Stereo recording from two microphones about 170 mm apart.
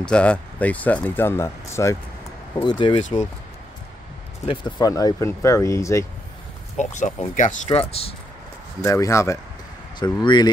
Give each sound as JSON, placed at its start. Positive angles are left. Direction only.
{"t": 0.0, "sound": "speech", "side_deg": 5}
{"t": 2.5, "sound": "speech", "side_deg": 25}
{"t": 4.5, "sound": "speech", "side_deg": 25}
{"t": 6.8, "sound": "speech", "side_deg": 45}
{"t": 8.8, "sound": "speech", "side_deg": 15}